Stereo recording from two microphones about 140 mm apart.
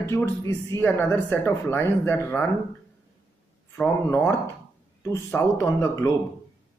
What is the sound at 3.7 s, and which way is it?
Speech, 15° left (ahead or behind).